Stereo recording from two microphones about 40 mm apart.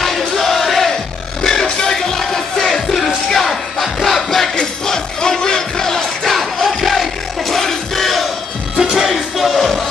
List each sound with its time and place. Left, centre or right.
0.4 s crowd: centre
1.4 s music: centre
3.3 s battle cry: centre
4.6 s music: centre
6.2 s music: centre